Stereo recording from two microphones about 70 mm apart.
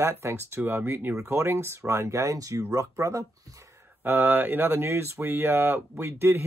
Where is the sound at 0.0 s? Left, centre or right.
Right.